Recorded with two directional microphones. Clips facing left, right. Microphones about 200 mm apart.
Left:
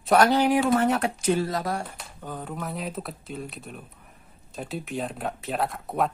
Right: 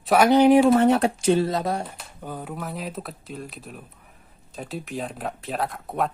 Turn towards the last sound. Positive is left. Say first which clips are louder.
# even
turn(degrees=0)  # may be behind; listen again after turning